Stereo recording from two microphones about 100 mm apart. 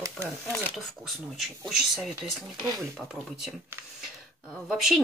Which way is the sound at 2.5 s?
45° right (ahead or behind).